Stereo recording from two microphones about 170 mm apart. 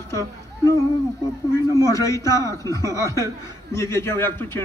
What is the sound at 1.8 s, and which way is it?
A man's voice, 20° left (ahead or behind).